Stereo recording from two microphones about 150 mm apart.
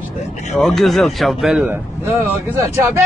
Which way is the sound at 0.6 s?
Centre (ahead or behind).